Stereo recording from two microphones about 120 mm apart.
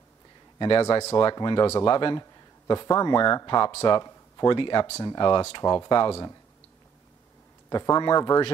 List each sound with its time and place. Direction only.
0.6 s a man's voice: 45° left (ahead or behind)
0.8 s speech: 20° left (ahead or behind)
1.1 s a man's voice: 35° left (ahead or behind)
2.6 s speech: 30° left (ahead or behind)
7.7 s speech: 30° left (ahead or behind)